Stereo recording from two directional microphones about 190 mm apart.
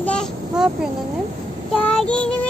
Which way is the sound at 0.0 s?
5° left (ahead or behind).